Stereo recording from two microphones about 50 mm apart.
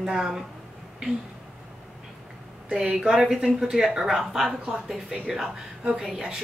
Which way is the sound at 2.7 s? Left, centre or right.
Centre.